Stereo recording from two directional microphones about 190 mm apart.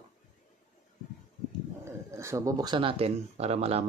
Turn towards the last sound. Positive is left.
turn(degrees=-35)  # may be behind; listen again after turning